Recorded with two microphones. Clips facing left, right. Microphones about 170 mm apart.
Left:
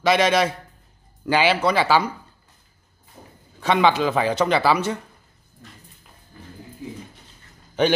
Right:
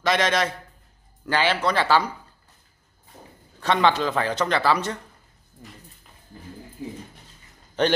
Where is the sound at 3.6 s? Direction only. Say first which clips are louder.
Left 2 dB; 5° left (ahead or behind).